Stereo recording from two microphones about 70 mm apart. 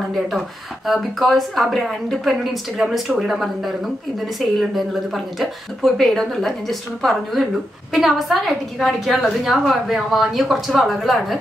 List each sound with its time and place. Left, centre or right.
0.8 s a woman's voice: centre
2.8 s speech: centre
3.2 s a woman's voice: centre